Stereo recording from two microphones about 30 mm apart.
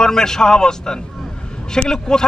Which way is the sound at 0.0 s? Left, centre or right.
Centre.